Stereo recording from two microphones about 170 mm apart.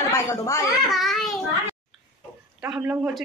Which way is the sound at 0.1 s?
20° left (ahead or behind).